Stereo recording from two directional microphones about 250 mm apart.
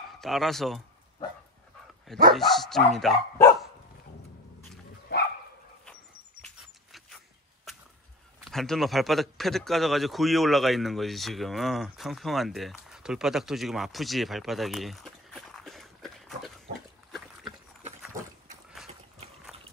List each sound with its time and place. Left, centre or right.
0.2 s speech: centre
2.3 s speech: centre
5.1 s bow-wow: left
8.5 s a man's voice: centre